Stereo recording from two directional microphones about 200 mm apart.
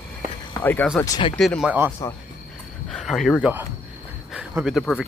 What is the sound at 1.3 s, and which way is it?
Speech, 5° left (ahead or behind).